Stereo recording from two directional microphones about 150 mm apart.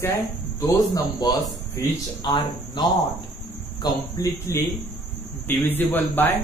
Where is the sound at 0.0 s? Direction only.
20° left (ahead or behind).